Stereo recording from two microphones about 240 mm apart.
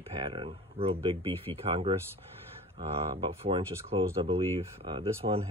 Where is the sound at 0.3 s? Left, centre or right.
Right.